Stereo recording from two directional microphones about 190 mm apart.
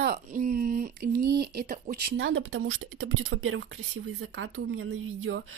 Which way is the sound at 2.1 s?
80° right.